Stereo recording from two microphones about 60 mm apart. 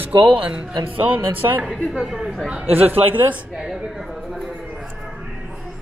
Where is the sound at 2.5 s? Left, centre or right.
Right.